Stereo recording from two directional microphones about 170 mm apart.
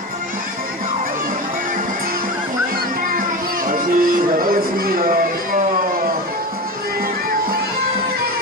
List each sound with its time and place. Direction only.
3.1 s music: 55° right (ahead or behind)